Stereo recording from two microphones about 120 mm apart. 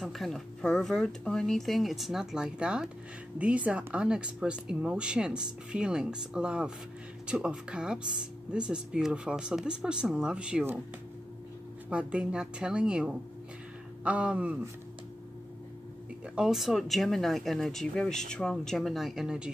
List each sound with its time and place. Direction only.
0.0 s speech: centre (ahead or behind)
11.9 s speech: 10° right (ahead or behind)
16.3 s speech: 5° right (ahead or behind)